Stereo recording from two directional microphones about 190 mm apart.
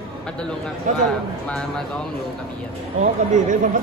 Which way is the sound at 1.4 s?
5° left (ahead or behind).